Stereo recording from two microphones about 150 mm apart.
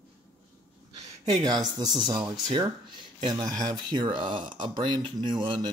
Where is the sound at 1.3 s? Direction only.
25° right (ahead or behind).